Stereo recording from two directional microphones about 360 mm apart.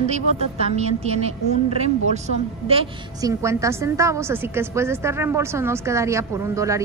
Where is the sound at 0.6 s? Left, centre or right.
Centre.